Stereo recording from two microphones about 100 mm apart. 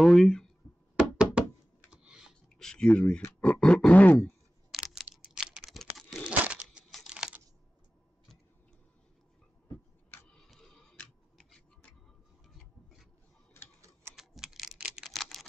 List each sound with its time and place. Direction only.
0.0 s speech: centre (ahead or behind)
1.1 s knock: 10° right (ahead or behind)
1.9 s computer keyboard: 10° right (ahead or behind)
2.5 s speech: 10° left (ahead or behind)
3.3 s grunt: 15° left (ahead or behind)
4.2 s a sound: centre (ahead or behind)
6.2 s a sound: 10° right (ahead or behind)
7.1 s computer keyboard: 5° right (ahead or behind)
10.3 s tick-tock: 5° left (ahead or behind)
13.7 s tick-tock: 30° right (ahead or behind)
14.1 s computer keyboard: 5° right (ahead or behind)
15.0 s a sound: centre (ahead or behind)